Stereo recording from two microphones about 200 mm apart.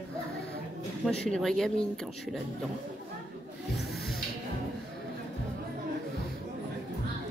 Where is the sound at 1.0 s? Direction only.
5° left (ahead or behind).